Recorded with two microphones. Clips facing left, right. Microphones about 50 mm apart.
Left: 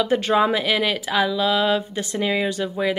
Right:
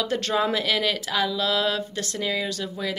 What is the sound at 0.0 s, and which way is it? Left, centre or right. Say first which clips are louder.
A woman's voice: left 5 dB; centre.